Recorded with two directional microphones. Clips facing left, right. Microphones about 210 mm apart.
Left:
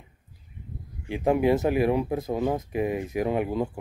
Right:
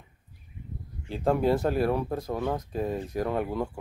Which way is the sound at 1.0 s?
15° left (ahead or behind).